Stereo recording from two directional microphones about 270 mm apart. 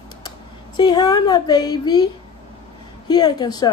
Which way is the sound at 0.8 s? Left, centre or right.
Centre.